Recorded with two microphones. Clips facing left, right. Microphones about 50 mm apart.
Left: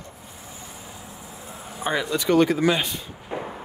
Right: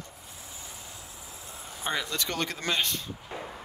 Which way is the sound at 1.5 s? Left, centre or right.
Centre.